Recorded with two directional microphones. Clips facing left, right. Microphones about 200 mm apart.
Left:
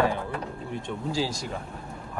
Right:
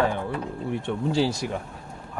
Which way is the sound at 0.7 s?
65° right (ahead or behind).